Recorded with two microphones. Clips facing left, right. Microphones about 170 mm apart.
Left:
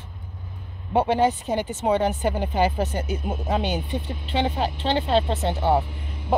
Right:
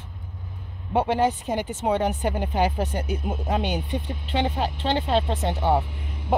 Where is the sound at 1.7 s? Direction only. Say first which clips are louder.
Left 2 dB; 10° right (ahead or behind).